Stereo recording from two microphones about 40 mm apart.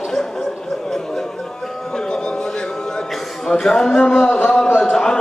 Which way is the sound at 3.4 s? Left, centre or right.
Centre.